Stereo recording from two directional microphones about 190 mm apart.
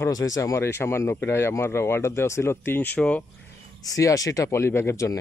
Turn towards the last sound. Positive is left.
turn(degrees=15)  # may be behind; listen again after turning